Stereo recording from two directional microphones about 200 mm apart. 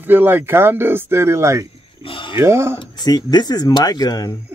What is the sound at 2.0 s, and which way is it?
Speech, 25° left (ahead or behind).